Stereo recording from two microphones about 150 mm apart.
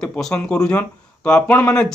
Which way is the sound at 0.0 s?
5° left (ahead or behind).